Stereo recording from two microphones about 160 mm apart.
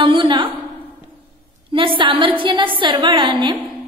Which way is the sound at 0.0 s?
30° right (ahead or behind).